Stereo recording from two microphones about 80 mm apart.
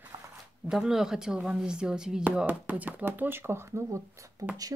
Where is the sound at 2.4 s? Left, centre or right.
Right.